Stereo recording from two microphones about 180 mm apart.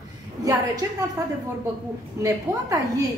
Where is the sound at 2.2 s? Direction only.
20° right (ahead or behind).